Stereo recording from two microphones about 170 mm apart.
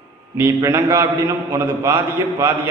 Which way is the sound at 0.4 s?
15° right (ahead or behind).